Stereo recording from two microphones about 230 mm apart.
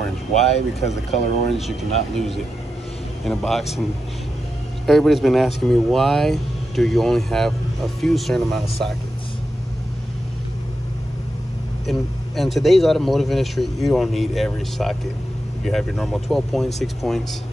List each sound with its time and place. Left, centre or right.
0.7 s speech: left
1.5 s speech: centre
4.8 s speech: centre
11.8 s speech: centre